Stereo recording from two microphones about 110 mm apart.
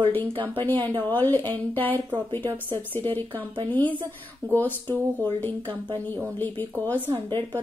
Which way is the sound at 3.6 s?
15° left (ahead or behind).